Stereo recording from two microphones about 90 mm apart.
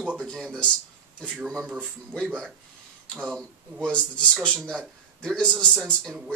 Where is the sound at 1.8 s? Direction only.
10° left (ahead or behind).